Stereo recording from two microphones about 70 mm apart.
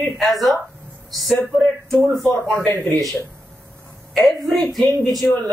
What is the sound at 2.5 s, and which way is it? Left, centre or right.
Speech, left.